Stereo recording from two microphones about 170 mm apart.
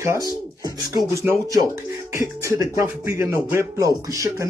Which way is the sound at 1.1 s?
20° right (ahead or behind).